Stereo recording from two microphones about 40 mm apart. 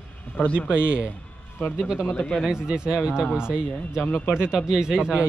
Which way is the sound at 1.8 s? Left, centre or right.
Centre.